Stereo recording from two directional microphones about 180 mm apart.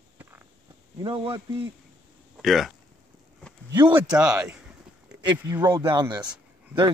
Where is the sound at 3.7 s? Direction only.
25° right (ahead or behind).